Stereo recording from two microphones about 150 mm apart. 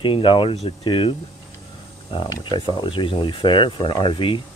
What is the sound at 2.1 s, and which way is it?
Speech, 30° left (ahead or behind).